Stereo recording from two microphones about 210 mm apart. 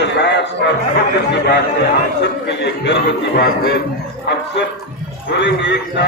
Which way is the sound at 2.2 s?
55° left (ahead or behind).